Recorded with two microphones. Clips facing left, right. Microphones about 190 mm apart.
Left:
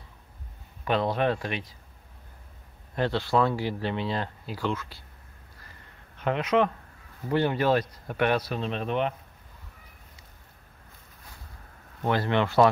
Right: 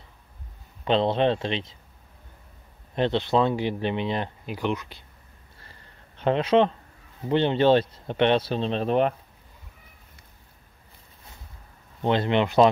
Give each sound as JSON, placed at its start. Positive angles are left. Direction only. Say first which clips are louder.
{"t": 0.8, "sound": "speech", "louder": "right 4 dB", "side_deg": -25}
{"t": 2.9, "sound": "speech", "louder": "right 3 dB", "side_deg": -20}
{"t": 5.6, "sound": "a sound", "louder": "right 1 dB", "side_deg": -30}
{"t": 7.2, "sound": "speech", "louder": "right 4 dB", "side_deg": -25}
{"t": 12.0, "sound": "speech", "louder": "right 3 dB", "side_deg": -20}